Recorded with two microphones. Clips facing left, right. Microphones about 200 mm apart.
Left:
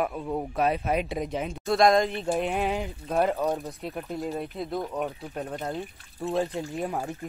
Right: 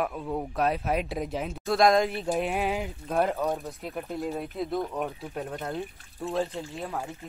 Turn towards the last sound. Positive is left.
turn(degrees=20)  # may be behind; listen again after turning